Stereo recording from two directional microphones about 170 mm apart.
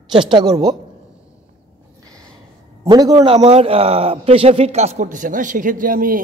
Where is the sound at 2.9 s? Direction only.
20° right (ahead or behind).